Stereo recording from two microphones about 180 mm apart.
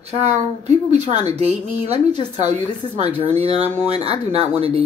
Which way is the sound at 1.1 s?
35° right (ahead or behind).